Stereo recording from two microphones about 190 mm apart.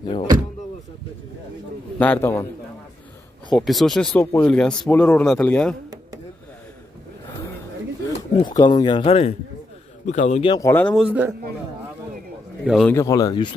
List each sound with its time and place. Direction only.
0.0 s speech: 25° left (ahead or behind)
2.0 s speech: 10° left (ahead or behind)
3.5 s speech: centre (ahead or behind)
8.4 s a man's voice: 20° left (ahead or behind)
10.5 s speech: 15° left (ahead or behind)
11.1 s a man's voice: 10° right (ahead or behind)
12.6 s speech: centre (ahead or behind)
12.9 s speech: 20° left (ahead or behind)